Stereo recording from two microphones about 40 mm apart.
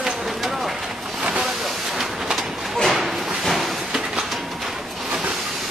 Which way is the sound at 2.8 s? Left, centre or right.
Centre.